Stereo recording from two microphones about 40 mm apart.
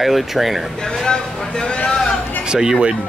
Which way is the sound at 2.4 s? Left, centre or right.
Centre.